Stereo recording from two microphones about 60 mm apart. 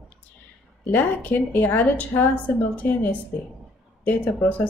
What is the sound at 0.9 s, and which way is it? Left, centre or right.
A woman's voice, left.